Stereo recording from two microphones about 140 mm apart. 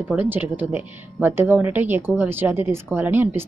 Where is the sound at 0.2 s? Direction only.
15° right (ahead or behind).